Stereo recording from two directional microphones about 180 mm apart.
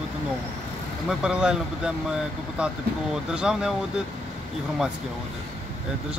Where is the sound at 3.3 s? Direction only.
5° right (ahead or behind).